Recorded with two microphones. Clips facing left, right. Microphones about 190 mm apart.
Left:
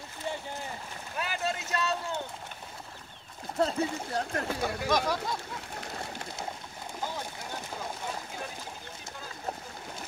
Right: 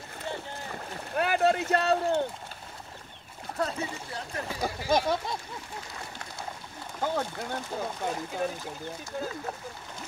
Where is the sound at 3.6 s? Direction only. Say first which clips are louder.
Left 3 dB; 30° left (ahead or behind).